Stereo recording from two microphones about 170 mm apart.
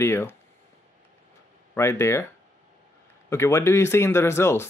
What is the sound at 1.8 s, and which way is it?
Speech, 15° left (ahead or behind).